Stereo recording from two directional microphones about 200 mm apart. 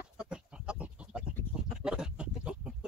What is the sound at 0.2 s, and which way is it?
Goat, 5° right (ahead or behind).